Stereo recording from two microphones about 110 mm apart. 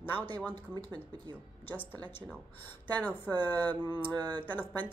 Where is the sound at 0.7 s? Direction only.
40° right (ahead or behind).